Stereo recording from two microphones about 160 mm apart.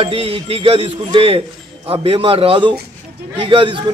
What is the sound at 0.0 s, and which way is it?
A man's voice, 35° right (ahead or behind).